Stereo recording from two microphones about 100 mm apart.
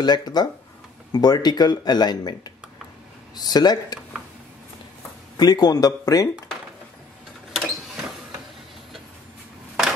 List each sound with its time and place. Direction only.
0.0 s speech: 45° left (ahead or behind)
5.4 s speech: 40° left (ahead or behind)
7.5 s a sound: centre (ahead or behind)